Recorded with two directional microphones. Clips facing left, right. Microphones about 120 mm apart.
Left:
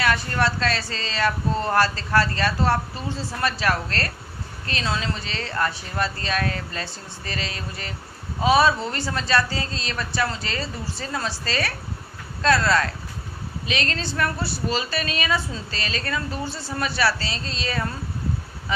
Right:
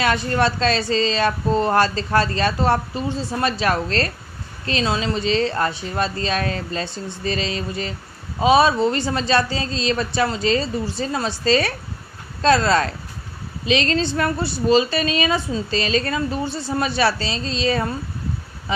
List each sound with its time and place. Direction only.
0.0 s a woman's voice: 20° right (ahead or behind)